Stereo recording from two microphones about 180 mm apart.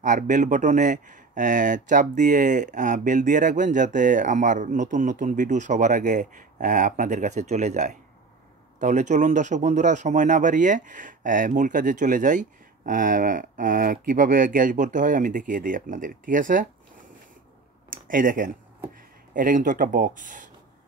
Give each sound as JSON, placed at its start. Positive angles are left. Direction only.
{"t": 0.0, "sound": "speech", "side_deg": -45}
{"t": 17.9, "sound": "speech", "side_deg": -50}